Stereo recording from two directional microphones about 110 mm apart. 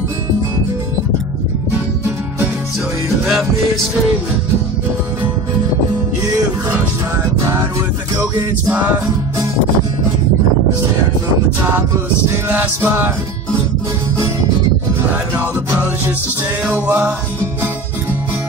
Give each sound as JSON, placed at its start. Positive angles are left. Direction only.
{"t": 8.2, "sound": "music", "side_deg": -15}
{"t": 12.5, "sound": "music", "side_deg": -15}
{"t": 16.6, "sound": "music", "side_deg": -15}